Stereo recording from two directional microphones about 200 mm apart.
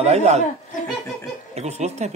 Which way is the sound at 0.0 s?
35° right (ahead or behind).